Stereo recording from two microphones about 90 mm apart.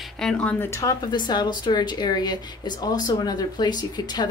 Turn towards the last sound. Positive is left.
turn(degrees=50)  # may be behind; listen again after turning